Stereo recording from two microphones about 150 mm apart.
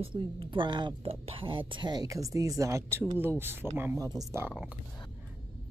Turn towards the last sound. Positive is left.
turn(degrees=-20)  # may be behind; listen again after turning